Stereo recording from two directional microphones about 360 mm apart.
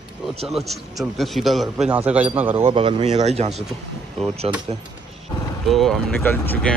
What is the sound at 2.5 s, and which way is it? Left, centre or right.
Speech, centre.